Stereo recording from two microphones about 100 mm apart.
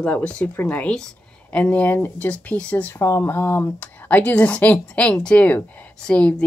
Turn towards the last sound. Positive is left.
turn(degrees=10)  # may be behind; listen again after turning